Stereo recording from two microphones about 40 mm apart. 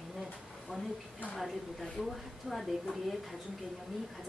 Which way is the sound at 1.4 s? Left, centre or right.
Centre.